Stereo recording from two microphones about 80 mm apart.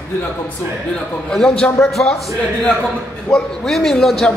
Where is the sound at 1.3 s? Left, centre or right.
Centre.